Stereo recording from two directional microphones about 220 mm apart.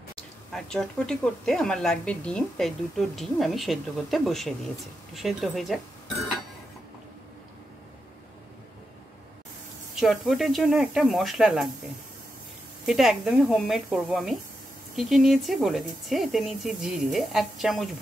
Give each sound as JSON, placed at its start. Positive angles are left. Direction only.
{"t": 0.5, "sound": "a woman's voice", "side_deg": 0}
{"t": 9.9, "sound": "a woman's voice", "side_deg": 0}
{"t": 12.8, "sound": "a woman's voice", "side_deg": 0}